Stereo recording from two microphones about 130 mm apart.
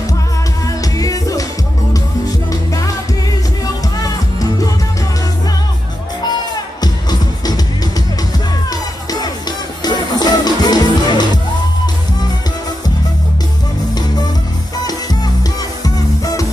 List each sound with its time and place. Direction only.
0.7 s music: 25° left (ahead or behind)
2.5 s music: 25° left (ahead or behind)
4.0 s music: 25° left (ahead or behind)
6.8 s music: 30° left (ahead or behind)
8.6 s music: 30° left (ahead or behind)
15.8 s music: 25° left (ahead or behind)